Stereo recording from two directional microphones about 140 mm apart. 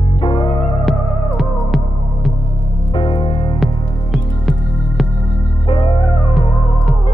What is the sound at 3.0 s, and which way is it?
Music, 35° left (ahead or behind).